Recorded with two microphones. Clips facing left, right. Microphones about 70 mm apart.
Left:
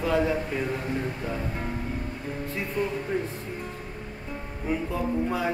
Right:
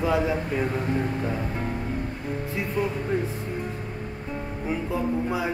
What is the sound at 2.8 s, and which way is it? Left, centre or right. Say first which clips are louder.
Music: right 2 dB; centre.